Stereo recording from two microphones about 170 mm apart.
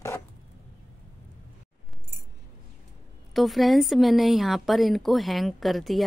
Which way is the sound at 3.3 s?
Centre (ahead or behind).